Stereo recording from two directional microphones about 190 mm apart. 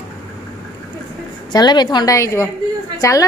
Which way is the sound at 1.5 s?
20° left (ahead or behind).